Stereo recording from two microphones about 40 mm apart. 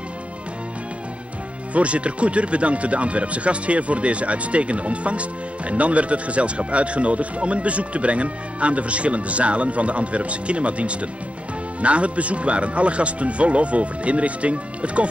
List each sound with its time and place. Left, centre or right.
1.7 s speech: right